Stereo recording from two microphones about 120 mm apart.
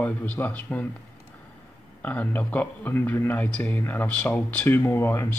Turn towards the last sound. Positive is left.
turn(degrees=20)  # may be behind; listen again after turning